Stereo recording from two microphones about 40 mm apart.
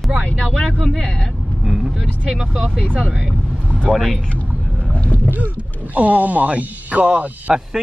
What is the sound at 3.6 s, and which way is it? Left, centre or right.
Vehicle, right.